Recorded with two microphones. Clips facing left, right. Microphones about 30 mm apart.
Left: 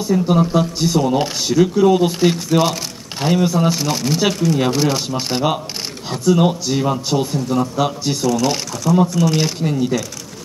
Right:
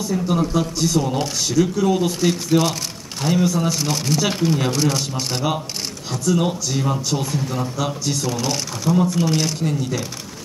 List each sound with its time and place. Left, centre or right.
0.0 s speech: centre
4.3 s speech: right
4.6 s speech: centre
7.3 s speech: centre
7.7 s speech: centre
8.9 s speech: centre
9.3 s speech: centre